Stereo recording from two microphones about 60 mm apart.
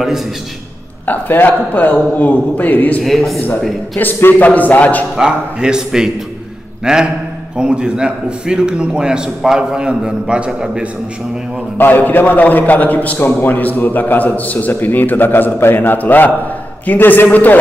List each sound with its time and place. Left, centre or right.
1.0 s a man's voice: left
4.4 s a man's voice: left
5.1 s a man's voice: centre
11.8 s a man's voice: left